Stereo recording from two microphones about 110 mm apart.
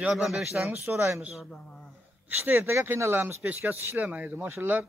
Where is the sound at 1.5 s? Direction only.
10° left (ahead or behind).